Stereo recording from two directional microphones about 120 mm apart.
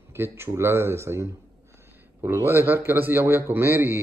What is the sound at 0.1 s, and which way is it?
A man's voice, 20° right (ahead or behind).